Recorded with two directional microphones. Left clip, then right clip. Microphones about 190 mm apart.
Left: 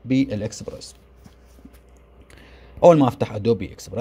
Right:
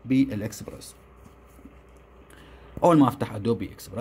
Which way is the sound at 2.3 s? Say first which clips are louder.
Right 1 dB; 20° left (ahead or behind).